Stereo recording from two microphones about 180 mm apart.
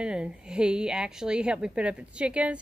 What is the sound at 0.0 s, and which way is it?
A woman's voice, 5° right (ahead or behind).